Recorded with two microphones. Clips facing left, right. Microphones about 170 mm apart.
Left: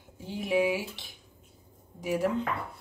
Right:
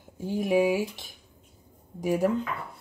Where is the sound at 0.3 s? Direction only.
45° right (ahead or behind).